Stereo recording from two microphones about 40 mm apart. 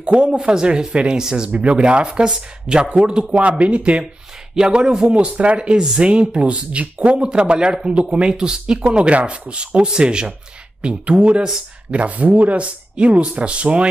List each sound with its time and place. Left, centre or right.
0.0 s speech: right
1.5 s speech: right